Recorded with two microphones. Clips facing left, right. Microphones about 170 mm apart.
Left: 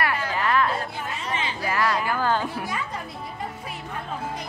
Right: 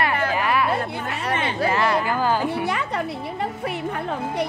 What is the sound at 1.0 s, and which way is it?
Speech, 65° right (ahead or behind).